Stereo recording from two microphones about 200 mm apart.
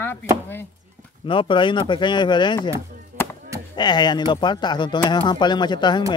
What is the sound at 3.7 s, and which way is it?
Speech, 20° left (ahead or behind).